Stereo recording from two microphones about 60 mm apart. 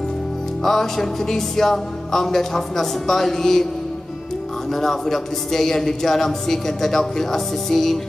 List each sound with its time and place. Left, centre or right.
0.7 s music: centre
4.7 s speech: centre